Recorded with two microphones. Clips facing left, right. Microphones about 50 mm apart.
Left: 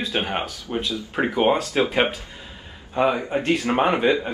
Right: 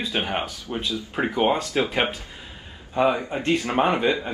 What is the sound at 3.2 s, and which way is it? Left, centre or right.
Speech, centre.